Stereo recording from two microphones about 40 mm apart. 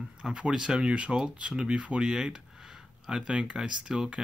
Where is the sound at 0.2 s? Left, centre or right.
Right.